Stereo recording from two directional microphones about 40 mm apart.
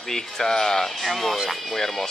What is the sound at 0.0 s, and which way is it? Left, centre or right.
Speech, centre.